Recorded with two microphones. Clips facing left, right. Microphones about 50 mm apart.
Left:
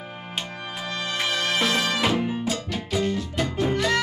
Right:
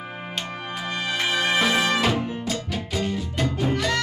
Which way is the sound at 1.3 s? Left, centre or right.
Centre.